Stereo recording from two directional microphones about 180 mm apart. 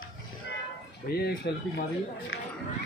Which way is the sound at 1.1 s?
60° left (ahead or behind).